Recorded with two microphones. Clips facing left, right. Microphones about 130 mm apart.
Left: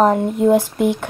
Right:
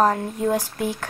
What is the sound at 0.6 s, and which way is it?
Speech, 65° left (ahead or behind).